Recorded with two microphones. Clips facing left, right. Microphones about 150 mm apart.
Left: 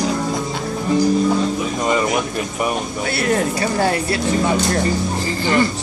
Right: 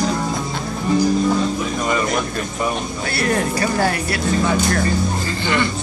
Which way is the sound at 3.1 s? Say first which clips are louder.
Left 1 dB; 20° left (ahead or behind).